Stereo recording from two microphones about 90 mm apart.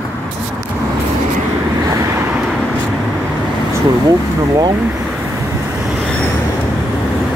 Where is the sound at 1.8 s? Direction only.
40° right (ahead or behind).